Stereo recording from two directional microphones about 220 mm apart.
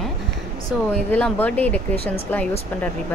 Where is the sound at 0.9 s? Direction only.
5° left (ahead or behind).